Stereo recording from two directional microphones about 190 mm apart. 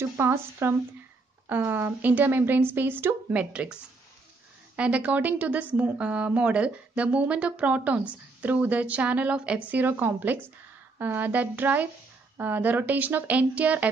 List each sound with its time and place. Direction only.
0.2 s speech: 10° right (ahead or behind)